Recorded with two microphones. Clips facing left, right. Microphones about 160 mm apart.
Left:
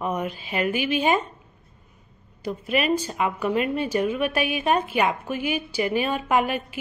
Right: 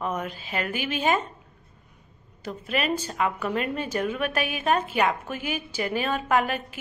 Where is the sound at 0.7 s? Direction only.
45° right (ahead or behind).